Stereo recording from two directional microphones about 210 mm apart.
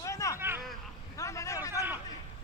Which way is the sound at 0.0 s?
15° left (ahead or behind).